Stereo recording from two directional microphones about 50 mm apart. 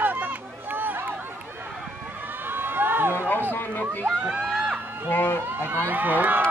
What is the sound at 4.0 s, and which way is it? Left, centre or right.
Speech, right.